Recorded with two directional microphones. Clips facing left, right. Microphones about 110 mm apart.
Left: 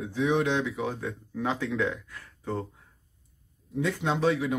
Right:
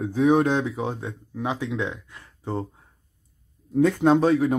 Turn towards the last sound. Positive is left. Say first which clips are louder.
# right 8 dB
turn(degrees=-40)  # may be behind; listen again after turning